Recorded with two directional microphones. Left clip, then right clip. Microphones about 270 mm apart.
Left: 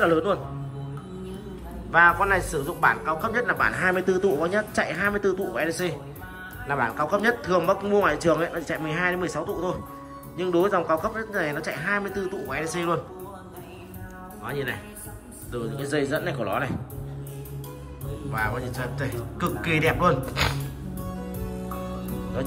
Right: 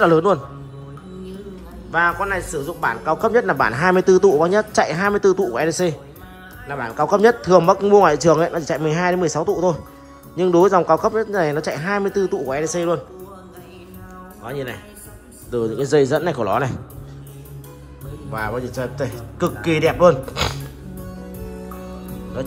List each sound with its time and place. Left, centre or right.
0.1 s a man's voice: centre
1.9 s a man's voice: centre
14.4 s a man's voice: centre
18.3 s a man's voice: centre